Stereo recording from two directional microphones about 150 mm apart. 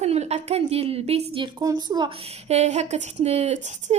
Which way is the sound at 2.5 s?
45° right (ahead or behind).